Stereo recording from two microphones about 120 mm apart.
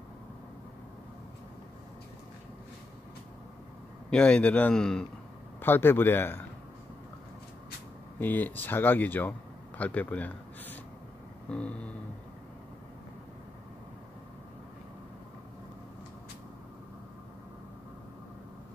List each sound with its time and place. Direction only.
4.1 s speech: 10° left (ahead or behind)
5.6 s speech: 15° left (ahead or behind)
8.2 s speech: 15° left (ahead or behind)